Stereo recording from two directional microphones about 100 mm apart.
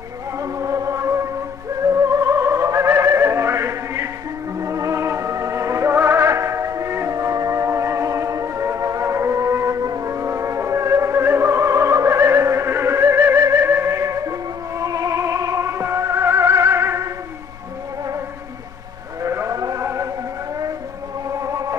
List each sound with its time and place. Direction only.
0.4 s music: 35° right (ahead or behind)
19.2 s music: 30° right (ahead or behind)
21.3 s music: 30° right (ahead or behind)